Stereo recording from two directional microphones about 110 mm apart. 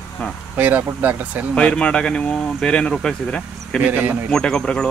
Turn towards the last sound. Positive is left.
turn(degrees=10)  # may be behind; listen again after turning